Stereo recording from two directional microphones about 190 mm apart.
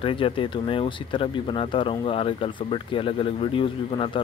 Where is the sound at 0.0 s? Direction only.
30° left (ahead or behind).